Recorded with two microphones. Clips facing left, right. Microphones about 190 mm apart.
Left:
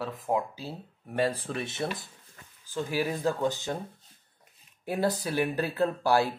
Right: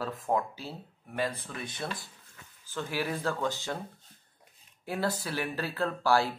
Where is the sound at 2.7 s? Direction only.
15° left (ahead or behind).